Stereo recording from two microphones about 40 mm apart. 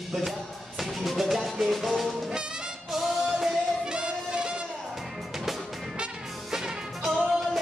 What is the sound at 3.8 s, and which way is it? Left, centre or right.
Music, right.